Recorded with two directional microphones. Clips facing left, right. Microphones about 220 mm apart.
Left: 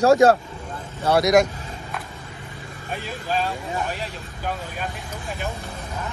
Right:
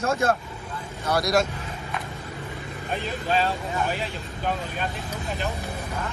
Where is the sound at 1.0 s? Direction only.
25° left (ahead or behind).